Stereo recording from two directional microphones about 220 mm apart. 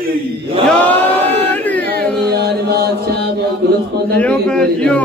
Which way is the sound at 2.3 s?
45° right (ahead or behind).